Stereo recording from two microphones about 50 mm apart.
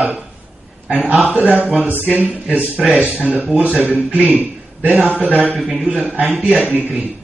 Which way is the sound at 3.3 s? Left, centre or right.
Centre.